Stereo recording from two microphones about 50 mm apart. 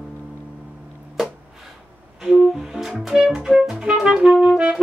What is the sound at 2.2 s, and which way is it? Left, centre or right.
Music, centre.